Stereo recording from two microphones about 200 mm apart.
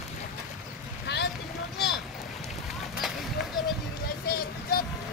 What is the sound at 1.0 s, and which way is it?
Vehicle, 55° left (ahead or behind).